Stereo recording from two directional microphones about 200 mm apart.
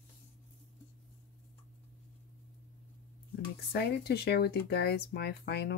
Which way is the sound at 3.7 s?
55° left (ahead or behind).